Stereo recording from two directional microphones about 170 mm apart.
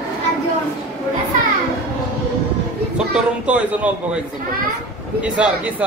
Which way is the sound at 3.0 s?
5° right (ahead or behind).